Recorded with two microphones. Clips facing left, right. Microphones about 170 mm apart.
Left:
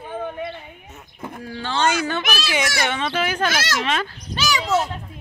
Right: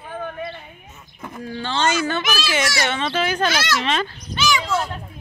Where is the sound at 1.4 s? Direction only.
10° left (ahead or behind).